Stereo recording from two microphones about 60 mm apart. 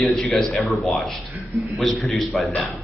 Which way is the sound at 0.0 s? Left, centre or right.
Centre.